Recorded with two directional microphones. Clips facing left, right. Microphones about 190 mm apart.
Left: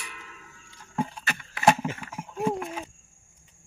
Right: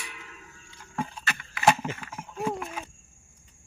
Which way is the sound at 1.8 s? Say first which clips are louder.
Left 2 dB; 10° left (ahead or behind).